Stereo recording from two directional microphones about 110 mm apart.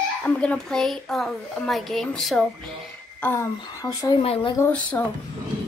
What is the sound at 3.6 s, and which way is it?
Speech, 35° left (ahead or behind).